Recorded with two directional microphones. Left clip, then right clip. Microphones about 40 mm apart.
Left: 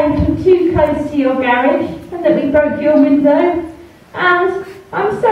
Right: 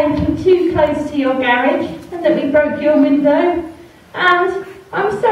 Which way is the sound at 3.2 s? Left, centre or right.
Right.